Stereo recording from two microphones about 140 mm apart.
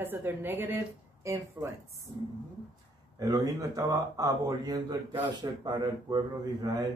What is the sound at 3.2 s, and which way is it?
A man's voice, 25° right (ahead or behind).